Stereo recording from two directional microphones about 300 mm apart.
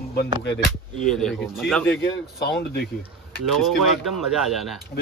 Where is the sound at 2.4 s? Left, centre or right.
Left.